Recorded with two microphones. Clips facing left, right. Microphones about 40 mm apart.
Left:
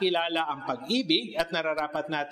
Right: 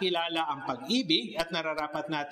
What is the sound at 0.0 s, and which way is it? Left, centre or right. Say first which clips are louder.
A man's voice: left 3 dB; centre.